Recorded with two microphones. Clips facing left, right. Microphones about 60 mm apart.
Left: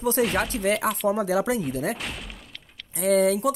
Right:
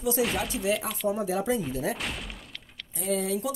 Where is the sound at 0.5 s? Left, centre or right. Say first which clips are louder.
Left 4 dB; left.